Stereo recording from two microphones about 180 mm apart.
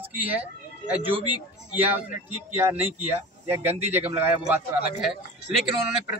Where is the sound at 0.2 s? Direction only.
10° right (ahead or behind).